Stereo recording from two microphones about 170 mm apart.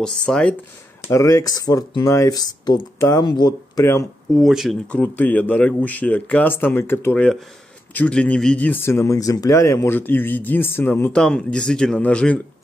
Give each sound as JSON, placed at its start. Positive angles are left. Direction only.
{"t": 0.0, "sound": "speech", "side_deg": 5}
{"t": 1.0, "sound": "speech", "side_deg": 20}
{"t": 4.4, "sound": "a man's voice", "side_deg": 0}